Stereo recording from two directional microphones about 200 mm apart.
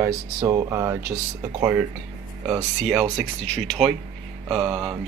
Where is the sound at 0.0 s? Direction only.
15° right (ahead or behind).